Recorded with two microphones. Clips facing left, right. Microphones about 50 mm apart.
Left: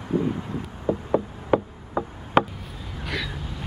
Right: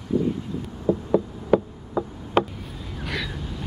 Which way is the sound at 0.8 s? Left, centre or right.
Left.